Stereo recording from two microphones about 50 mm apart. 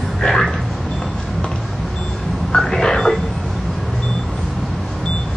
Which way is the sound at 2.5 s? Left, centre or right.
Centre.